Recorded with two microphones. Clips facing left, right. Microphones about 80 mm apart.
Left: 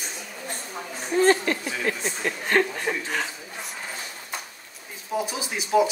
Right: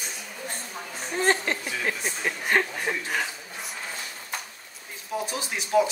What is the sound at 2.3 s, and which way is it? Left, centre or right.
Speech, centre.